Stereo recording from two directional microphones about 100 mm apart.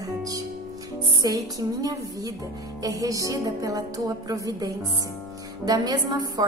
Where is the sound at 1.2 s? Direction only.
40° right (ahead or behind).